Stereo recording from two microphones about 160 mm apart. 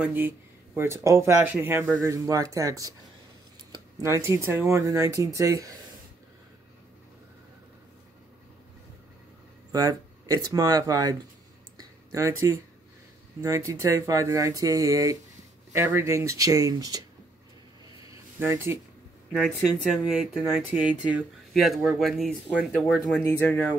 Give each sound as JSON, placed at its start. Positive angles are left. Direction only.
{"t": 0.0, "sound": "speech", "side_deg": -10}
{"t": 9.7, "sound": "speech", "side_deg": -25}
{"t": 11.8, "sound": "a sound", "side_deg": -20}
{"t": 13.4, "sound": "speech", "side_deg": -20}
{"t": 18.4, "sound": "speech", "side_deg": -15}
{"t": 19.3, "sound": "speech", "side_deg": 5}
{"t": 23.2, "sound": "speech", "side_deg": 10}